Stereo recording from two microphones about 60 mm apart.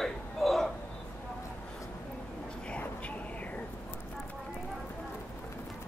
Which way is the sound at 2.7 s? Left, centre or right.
Left.